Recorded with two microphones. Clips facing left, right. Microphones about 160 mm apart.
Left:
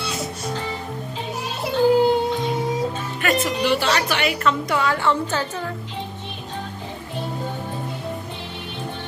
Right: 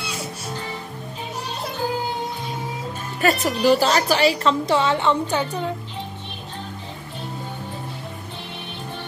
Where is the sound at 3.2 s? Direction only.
35° right (ahead or behind); by 5.7 s 15° right (ahead or behind).